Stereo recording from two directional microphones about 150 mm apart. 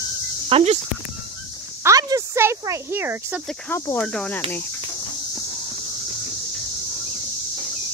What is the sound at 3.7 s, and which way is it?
Speech, 15° left (ahead or behind).